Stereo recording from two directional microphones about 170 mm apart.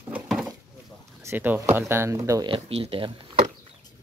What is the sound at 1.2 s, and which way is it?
Speech, 10° right (ahead or behind).